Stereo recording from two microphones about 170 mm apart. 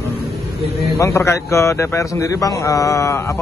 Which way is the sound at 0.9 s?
15° left (ahead or behind).